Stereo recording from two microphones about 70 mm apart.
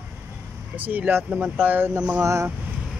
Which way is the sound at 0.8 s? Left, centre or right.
Right.